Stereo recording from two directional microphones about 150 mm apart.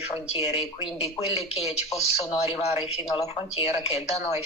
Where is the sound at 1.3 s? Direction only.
45° left (ahead or behind).